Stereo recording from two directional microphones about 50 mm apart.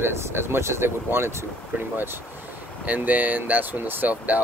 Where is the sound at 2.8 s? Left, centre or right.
Right.